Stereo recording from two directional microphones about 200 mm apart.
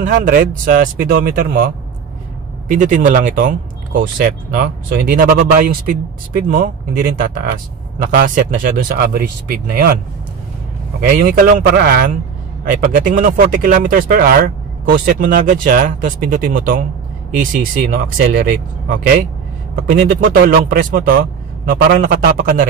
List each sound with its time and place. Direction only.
0.2 s speech: 40° right (ahead or behind)
2.7 s speech: 40° right (ahead or behind)
11.0 s speech: 45° right (ahead or behind)